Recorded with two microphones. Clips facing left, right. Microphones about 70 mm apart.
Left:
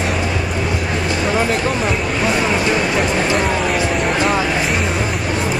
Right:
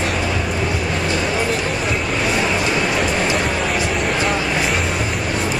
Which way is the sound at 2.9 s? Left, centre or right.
Centre.